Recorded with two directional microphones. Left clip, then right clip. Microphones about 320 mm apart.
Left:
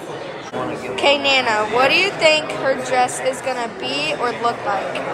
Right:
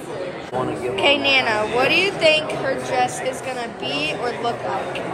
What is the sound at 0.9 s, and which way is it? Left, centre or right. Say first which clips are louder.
A woman's voice: left 1 dB; centre.